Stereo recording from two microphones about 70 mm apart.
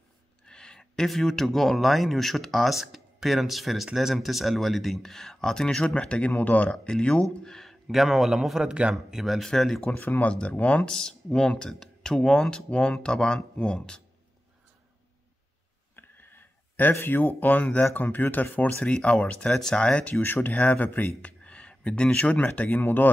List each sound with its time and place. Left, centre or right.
0.5 s speech: centre
7.9 s speech: centre
8.9 s speech: centre
9.8 s speech: left
10.9 s speech: centre
16.0 s a sound: left
16.9 s speech: left
18.9 s speech: centre
20.2 s speech: left